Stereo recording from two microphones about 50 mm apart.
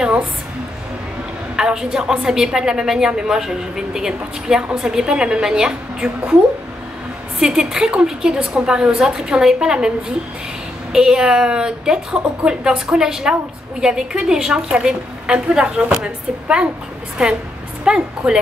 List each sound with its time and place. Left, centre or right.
1.6 s speech: centre
7.3 s speech: centre